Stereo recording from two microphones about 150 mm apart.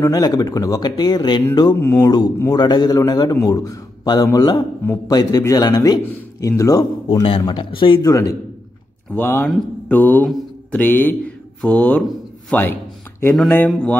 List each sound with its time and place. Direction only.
0.0 s a man's voice: 25° left (ahead or behind)
2.3 s mantra: 20° left (ahead or behind)
2.6 s a man's voice: 30° left (ahead or behind)
8.1 s a man's voice: 20° left (ahead or behind)
9.1 s mantra: 10° left (ahead or behind)
10.3 s speech: 10° left (ahead or behind)
13.7 s mantra: 5° left (ahead or behind)